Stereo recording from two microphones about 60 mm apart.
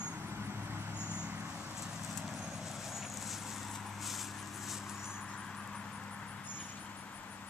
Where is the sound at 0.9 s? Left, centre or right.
Left.